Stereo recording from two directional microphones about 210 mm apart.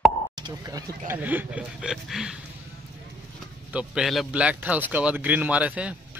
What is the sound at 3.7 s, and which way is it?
A man's voice, 5° right (ahead or behind).